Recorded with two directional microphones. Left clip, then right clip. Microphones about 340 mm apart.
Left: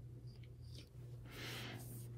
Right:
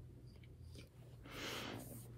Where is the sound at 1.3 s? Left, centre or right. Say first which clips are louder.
Right 3 dB; right.